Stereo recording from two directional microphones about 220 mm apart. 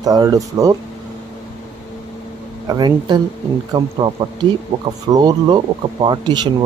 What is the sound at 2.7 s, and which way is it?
Speech, 20° right (ahead or behind).